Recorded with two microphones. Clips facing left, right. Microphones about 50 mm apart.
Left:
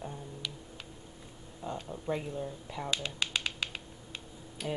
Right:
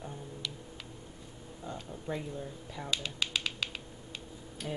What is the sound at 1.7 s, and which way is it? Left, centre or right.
Speech, centre.